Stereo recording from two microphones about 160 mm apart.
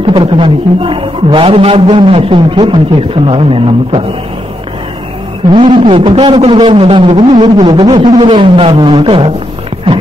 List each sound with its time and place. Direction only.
0.0 s a man's voice: 30° right (ahead or behind)
5.5 s a man's voice: 30° right (ahead or behind)
7.3 s a sound: 25° right (ahead or behind)
8.2 s a man's voice: 35° right (ahead or behind)